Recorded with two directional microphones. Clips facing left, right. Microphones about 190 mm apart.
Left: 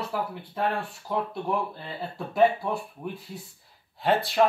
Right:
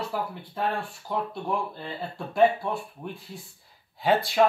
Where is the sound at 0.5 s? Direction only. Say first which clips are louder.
Left 1 dB; centre (ahead or behind).